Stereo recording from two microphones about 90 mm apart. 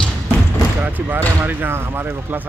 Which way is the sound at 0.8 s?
20° right (ahead or behind).